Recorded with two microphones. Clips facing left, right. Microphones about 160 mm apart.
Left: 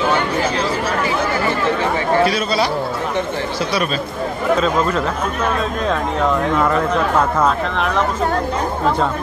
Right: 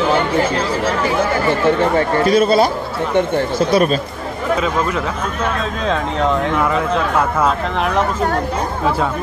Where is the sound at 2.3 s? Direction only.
50° right (ahead or behind).